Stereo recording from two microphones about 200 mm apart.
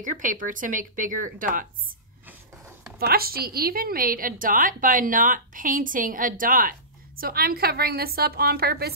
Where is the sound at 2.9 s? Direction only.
50° right (ahead or behind).